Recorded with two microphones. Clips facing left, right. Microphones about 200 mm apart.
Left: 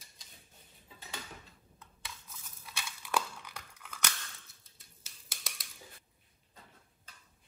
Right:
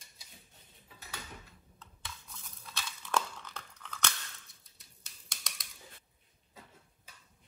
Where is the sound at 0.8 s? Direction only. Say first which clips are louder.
Left 2 dB; 25° left (ahead or behind).